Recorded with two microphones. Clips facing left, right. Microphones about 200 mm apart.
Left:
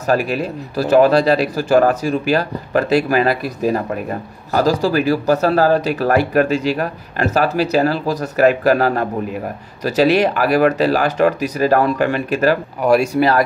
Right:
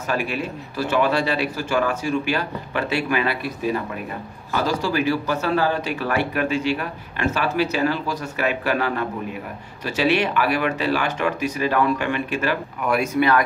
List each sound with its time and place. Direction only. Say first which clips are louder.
0.0 s speech: left 7 dB; 40° left (ahead or behind)